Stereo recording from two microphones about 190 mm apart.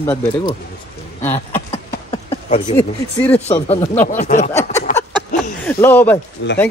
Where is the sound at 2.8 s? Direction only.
10° left (ahead or behind).